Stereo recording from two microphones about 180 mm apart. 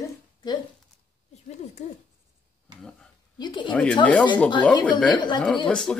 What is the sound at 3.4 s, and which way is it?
Speech, 25° left (ahead or behind).